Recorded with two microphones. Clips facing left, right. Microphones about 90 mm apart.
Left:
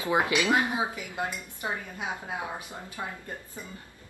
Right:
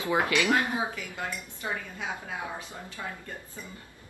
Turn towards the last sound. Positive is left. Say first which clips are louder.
# left 2 dB
turn(degrees=20)  # may be behind; listen again after turning